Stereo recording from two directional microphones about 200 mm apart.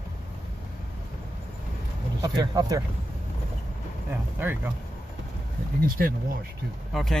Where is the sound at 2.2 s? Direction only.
20° right (ahead or behind).